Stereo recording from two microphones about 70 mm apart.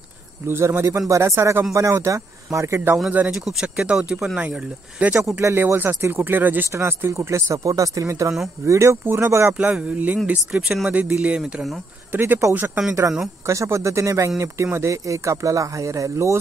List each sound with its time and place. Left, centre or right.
0.5 s speech: right
3.3 s speech: centre
5.4 s speech: right
6.7 s speech: right
9.0 s speech: right
9.6 s speech: centre
10.9 s speech: centre
12.1 s speech: right
13.5 s speech: right